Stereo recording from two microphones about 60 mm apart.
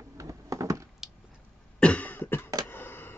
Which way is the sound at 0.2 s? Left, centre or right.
Right.